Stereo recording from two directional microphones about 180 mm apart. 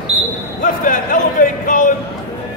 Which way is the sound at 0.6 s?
50° left (ahead or behind).